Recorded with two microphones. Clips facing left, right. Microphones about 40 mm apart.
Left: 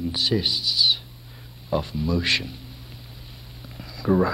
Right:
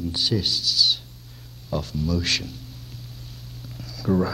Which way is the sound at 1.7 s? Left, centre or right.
Left.